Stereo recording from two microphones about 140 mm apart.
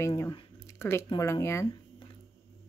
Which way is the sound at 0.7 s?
20° left (ahead or behind).